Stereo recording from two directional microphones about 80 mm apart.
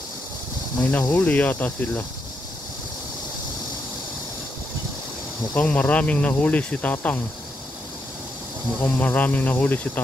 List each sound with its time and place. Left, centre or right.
0.7 s speech: centre
5.5 s speech: left
8.8 s speech: left